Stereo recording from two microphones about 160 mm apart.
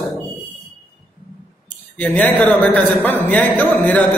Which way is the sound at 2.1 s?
10° left (ahead or behind).